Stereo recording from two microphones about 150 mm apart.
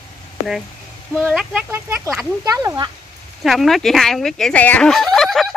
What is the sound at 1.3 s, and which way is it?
Speech, 5° right (ahead or behind).